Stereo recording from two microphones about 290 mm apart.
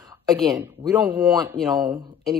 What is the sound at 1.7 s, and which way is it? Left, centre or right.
Speech, centre.